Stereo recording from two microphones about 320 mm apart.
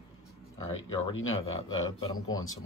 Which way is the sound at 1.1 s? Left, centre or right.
Left.